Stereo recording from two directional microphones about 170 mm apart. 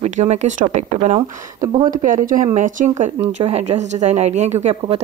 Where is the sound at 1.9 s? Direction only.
50° right (ahead or behind).